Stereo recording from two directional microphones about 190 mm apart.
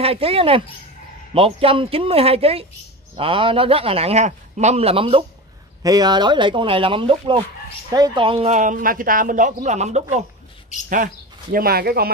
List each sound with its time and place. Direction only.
0.0 s a man's voice: 30° right (ahead or behind)
10.7 s speech: 40° left (ahead or behind)
11.5 s speech: 50° right (ahead or behind)